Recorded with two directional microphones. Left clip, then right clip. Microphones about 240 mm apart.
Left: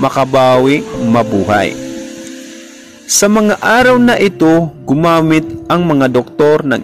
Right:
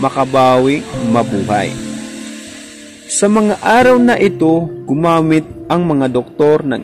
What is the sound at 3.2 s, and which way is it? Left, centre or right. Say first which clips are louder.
A man's voice: left 2 dB; centre.